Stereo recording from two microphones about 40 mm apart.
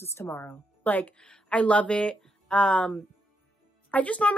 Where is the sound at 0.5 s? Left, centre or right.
Left.